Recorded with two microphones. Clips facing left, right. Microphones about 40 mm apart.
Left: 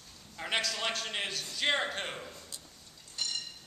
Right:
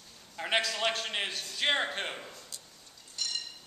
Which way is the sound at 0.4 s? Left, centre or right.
Centre.